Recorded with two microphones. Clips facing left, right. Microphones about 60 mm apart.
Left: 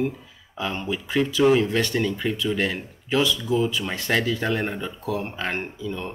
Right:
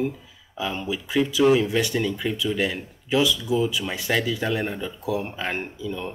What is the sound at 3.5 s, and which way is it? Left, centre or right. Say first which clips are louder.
Speech: even; centre.